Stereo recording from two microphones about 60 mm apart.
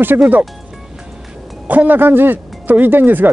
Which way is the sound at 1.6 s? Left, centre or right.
Right.